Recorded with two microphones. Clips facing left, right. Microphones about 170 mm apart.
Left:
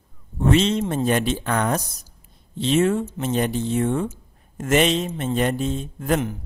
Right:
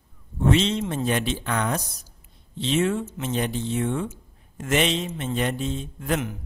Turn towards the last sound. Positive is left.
turn(degrees=45)  # may be behind; listen again after turning